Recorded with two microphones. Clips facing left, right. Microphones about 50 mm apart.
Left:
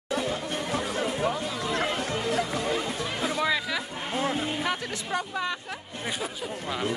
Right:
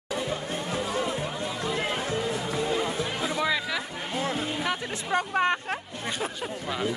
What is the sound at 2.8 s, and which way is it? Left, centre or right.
Music, right.